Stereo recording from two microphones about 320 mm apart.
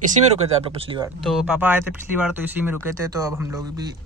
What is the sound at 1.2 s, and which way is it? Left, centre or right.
Speech, centre.